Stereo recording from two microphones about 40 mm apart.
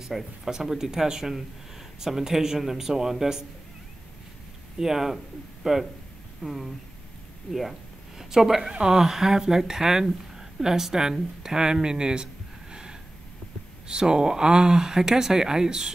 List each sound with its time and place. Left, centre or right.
0.0 s speech: centre
4.7 s speech: centre
8.2 s a man's voice: centre
13.8 s speech: centre